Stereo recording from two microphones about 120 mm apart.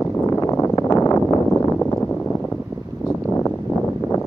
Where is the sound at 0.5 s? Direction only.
25° left (ahead or behind).